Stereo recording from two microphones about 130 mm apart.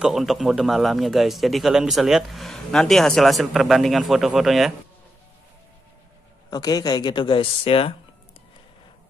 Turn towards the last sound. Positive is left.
turn(degrees=45)  # may be behind; listen again after turning